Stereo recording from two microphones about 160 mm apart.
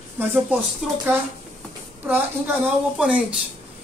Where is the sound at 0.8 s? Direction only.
Centre (ahead or behind).